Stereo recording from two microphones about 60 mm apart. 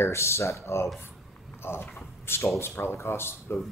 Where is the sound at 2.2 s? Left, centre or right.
Left.